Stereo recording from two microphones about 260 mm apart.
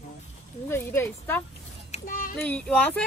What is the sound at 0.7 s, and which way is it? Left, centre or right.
Speech, centre.